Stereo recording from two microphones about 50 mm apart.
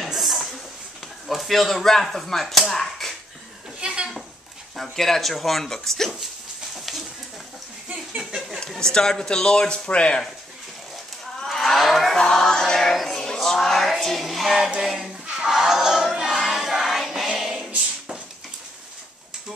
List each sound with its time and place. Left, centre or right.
0.0 s a sound: centre
1.2 s speech: centre
2.7 s dishes: centre
3.8 s goat: centre
4.9 s speech: centre
6.7 s a sound: centre
8.5 s a man's voice: centre
11.4 s cattle: centre
12.2 s music: centre
14.7 s a sound: centre
16.4 s music: centre
17.4 s a sound: centre